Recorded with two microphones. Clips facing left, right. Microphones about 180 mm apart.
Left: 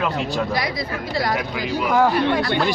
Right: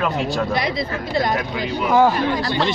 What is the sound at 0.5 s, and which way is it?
Speech, 25° right (ahead or behind).